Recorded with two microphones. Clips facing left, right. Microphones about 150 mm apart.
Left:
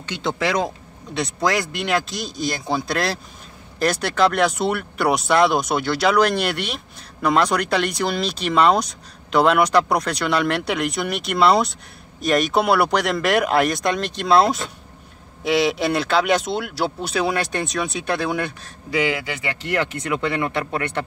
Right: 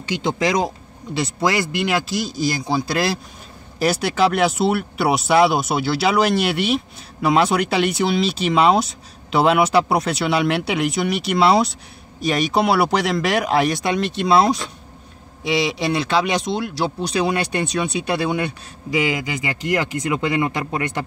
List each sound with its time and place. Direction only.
0.0 s speech: 10° right (ahead or behind)
1.1 s speech: 5° right (ahead or behind)
18.9 s speech: 10° right (ahead or behind)